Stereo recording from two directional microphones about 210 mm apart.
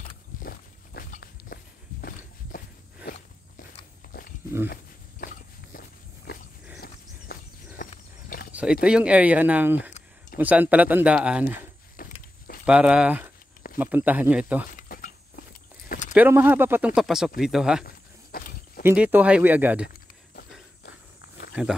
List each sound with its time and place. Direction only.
0.4 s walk: 40° left (ahead or behind)
5.2 s walk: 45° left (ahead or behind)
6.8 s horse: 45° left (ahead or behind)
8.8 s speech: 5° right (ahead or behind)
12.0 s a sound: 45° left (ahead or behind)
12.6 s speech: 5° right (ahead or behind)
14.8 s a sound: 40° left (ahead or behind)
16.2 s speech: 10° right (ahead or behind)
17.8 s a sound: 45° left (ahead or behind)
18.8 s speech: 10° right (ahead or behind)